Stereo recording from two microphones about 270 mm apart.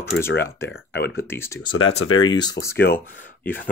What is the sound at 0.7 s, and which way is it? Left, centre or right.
Speech, left.